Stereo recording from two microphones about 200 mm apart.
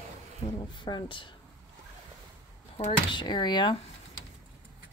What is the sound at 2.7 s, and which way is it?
Speech, 25° left (ahead or behind).